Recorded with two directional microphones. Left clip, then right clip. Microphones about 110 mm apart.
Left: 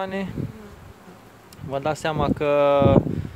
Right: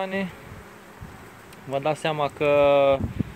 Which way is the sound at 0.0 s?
30° left (ahead or behind).